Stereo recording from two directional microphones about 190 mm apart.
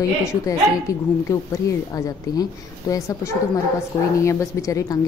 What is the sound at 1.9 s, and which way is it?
Speech, 20° left (ahead or behind).